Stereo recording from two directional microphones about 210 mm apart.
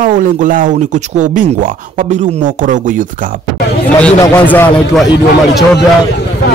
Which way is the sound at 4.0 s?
5° left (ahead or behind).